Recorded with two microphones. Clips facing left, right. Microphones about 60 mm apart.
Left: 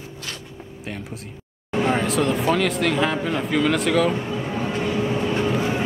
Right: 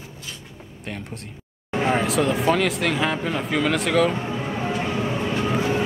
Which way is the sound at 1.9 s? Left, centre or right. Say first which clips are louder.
Right 1 dB; centre.